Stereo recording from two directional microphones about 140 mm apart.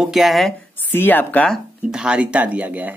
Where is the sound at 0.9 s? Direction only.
15° left (ahead or behind).